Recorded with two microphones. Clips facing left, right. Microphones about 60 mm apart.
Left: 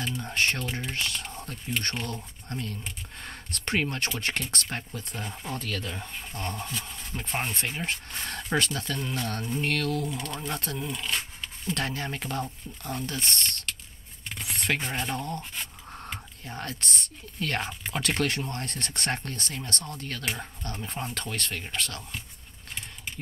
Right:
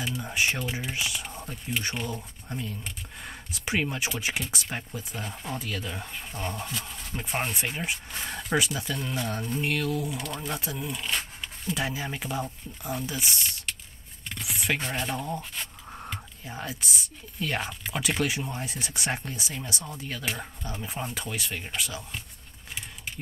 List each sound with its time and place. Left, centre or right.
0.0 s speech: centre